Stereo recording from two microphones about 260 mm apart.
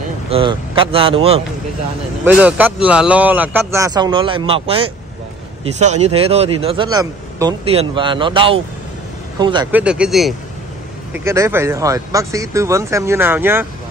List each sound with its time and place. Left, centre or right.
0.3 s a man's voice: centre
2.2 s a man's voice: centre
9.7 s speech: centre